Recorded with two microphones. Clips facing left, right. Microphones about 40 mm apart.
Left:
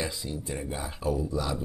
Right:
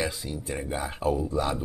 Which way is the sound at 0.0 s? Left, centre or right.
Right.